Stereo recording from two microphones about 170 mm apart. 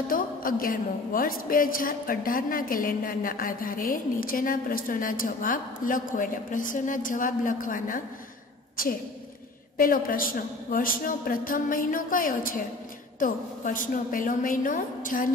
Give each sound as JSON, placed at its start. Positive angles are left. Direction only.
{"t": 0.1, "sound": "a woman's voice", "side_deg": 55}
{"t": 9.8, "sound": "a woman's voice", "side_deg": 55}